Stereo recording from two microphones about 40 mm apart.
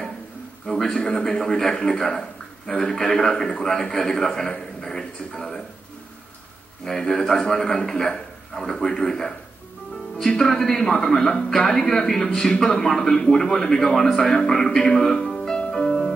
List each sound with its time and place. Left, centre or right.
0.7 s a man's voice: centre
0.9 s a man's voice: centre
6.8 s a man's voice: centre
15.7 s music: centre